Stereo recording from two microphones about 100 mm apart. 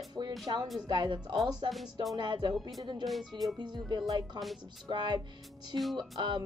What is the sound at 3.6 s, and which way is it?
Speech, 45° right (ahead or behind).